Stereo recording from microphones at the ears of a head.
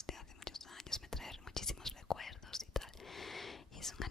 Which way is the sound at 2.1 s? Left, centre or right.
Left.